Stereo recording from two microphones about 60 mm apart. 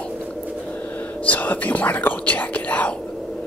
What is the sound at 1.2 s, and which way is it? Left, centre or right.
Speech, left.